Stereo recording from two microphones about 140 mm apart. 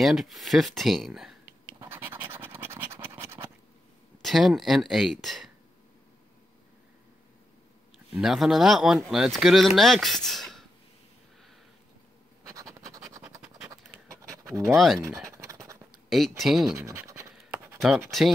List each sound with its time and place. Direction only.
0.0 s speech: centre (ahead or behind)
1.8 s scratch: 15° right (ahead or behind)
4.2 s speech: centre (ahead or behind)
8.2 s speech: centre (ahead or behind)
12.5 s scratch: 25° right (ahead or behind)
14.2 s pant: 20° right (ahead or behind)
15.0 s scratch: 20° right (ahead or behind)
16.1 s speech: centre (ahead or behind)
16.8 s scratch: 20° right (ahead or behind)